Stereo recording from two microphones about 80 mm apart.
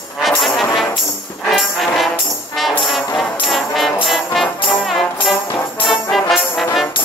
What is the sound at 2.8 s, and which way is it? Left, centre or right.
Brass instrument, centre.